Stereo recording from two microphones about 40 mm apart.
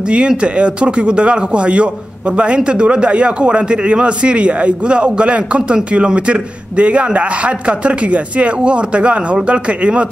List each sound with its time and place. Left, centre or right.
0.4 s a man's voice: right